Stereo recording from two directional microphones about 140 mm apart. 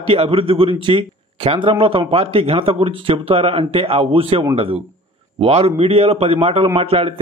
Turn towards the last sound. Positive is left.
turn(degrees=-45)  # may be behind; listen again after turning